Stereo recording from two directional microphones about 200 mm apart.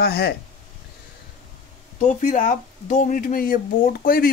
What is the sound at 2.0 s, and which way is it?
Speech, 40° left (ahead or behind).